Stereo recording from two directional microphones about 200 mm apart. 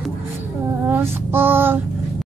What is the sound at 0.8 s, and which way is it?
Child singing, 10° right (ahead or behind).